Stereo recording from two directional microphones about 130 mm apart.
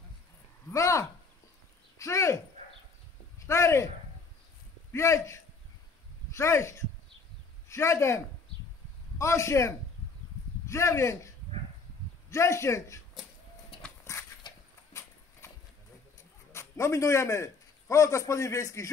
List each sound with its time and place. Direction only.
0.7 s speech: 25° left (ahead or behind)
4.9 s a man's voice: 20° left (ahead or behind)
9.2 s a man's voice: 20° left (ahead or behind)
14.1 s horse: 20° left (ahead or behind)
14.9 s clip-clop: 25° left (ahead or behind)
15.4 s horse: 20° left (ahead or behind)
16.5 s a man's voice: 25° left (ahead or behind)